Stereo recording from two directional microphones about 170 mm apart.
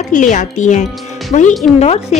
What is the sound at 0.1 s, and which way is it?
Speech, 50° left (ahead or behind).